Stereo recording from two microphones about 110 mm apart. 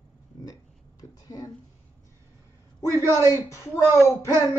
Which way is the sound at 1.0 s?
35° left (ahead or behind).